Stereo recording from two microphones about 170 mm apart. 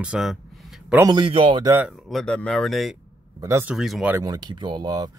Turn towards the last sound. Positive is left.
turn(degrees=-25)  # may be behind; listen again after turning